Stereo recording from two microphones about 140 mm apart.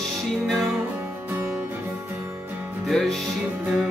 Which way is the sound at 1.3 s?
15° right (ahead or behind).